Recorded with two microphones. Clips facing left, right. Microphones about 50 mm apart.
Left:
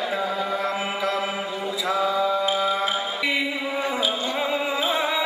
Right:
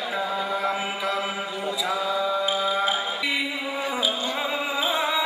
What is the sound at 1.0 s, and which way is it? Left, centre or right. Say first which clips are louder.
Music: left 2 dB; centre.